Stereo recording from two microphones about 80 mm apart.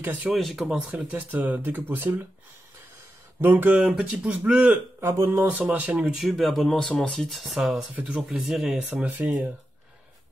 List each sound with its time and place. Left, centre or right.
0.0 s speech: right
0.3 s speech: centre
0.9 s speech: centre
3.3 s speech: right
5.0 s speech: right
5.6 s speech: centre
6.1 s speech: centre